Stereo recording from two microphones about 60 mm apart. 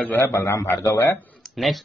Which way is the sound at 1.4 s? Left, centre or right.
Centre.